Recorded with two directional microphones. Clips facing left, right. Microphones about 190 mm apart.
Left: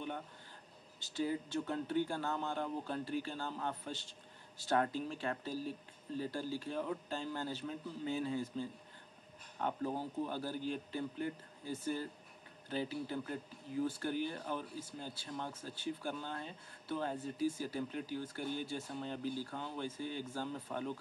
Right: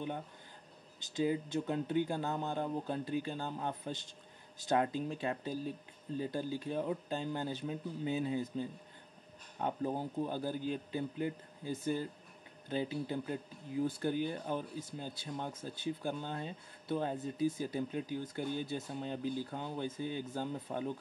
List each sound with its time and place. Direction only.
0.9 s speech: 15° right (ahead or behind)